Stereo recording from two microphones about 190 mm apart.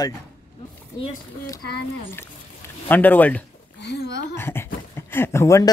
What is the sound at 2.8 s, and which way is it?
Speech, 10° left (ahead or behind).